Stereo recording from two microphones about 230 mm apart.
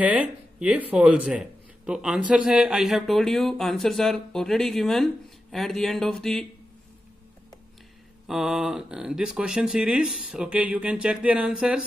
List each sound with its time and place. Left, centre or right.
0.0 s speech: centre
8.3 s speech: centre